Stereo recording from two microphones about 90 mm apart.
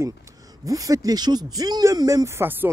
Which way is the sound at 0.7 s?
40° right (ahead or behind).